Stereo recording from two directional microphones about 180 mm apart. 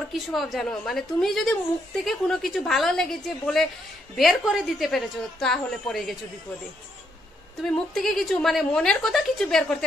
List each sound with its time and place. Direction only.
0.3 s a woman's voice: centre (ahead or behind)
7.6 s a woman's voice: 5° left (ahead or behind)